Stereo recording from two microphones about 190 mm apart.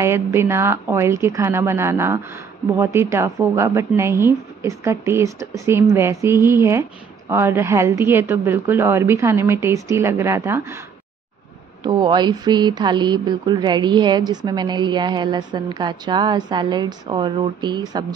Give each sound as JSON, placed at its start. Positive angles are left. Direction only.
{"t": 0.0, "sound": "a woman's voice", "side_deg": -15}
{"t": 11.8, "sound": "speech", "side_deg": -25}